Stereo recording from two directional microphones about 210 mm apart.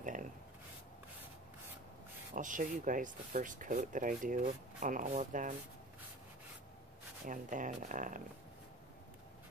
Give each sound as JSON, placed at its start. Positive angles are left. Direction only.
{"t": 0.0, "sound": "a sound", "side_deg": -40}
{"t": 2.3, "sound": "speech", "side_deg": -40}
{"t": 7.2, "sound": "speech", "side_deg": -40}